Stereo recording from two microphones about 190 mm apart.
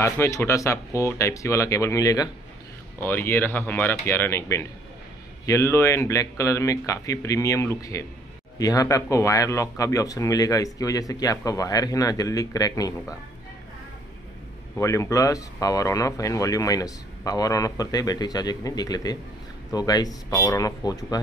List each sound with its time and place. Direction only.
0.0 s speech: 15° left (ahead or behind)
14.8 s speech: 15° left (ahead or behind)